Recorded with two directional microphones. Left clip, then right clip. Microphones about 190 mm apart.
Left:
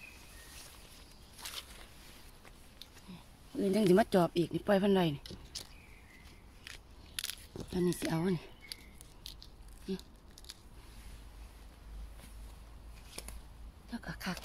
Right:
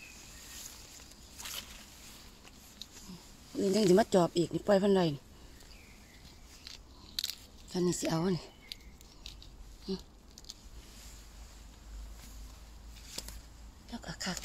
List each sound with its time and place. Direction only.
3.5 s speech: 5° right (ahead or behind)
7.7 s speech: 20° right (ahead or behind)
9.9 s speech: 15° right (ahead or behind)
13.9 s a sound: 5° right (ahead or behind)